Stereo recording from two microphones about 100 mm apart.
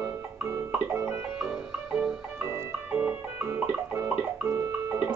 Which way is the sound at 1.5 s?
5° right (ahead or behind).